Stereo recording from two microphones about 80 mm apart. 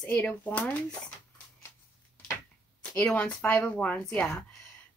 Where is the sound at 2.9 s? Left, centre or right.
Centre.